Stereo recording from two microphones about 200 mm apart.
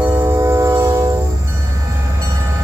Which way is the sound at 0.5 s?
15° right (ahead or behind).